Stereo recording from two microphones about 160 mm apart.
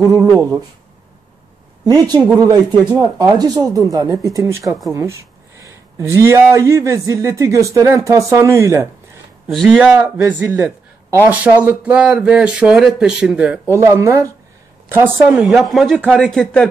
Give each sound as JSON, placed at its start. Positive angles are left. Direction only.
{"t": 0.0, "sound": "speech", "side_deg": -20}
{"t": 2.3, "sound": "speech", "side_deg": -20}
{"t": 9.5, "sound": "a man's voice", "side_deg": 0}
{"t": 13.7, "sound": "speech", "side_deg": -20}
{"t": 15.5, "sound": "speech", "side_deg": 0}